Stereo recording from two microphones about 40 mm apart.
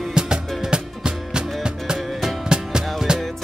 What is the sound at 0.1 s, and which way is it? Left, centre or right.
Music, centre.